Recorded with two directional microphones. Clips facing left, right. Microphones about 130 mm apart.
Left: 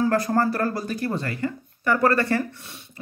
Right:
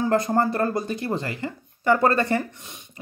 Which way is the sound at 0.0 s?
20° right (ahead or behind).